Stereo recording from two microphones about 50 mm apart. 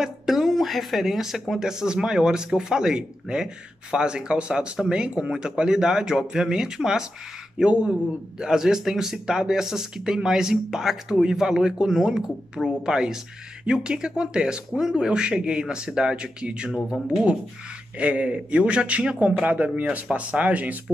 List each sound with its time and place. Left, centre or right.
0.0 s a sound: centre
1.5 s speech: centre
17.9 s a man's voice: right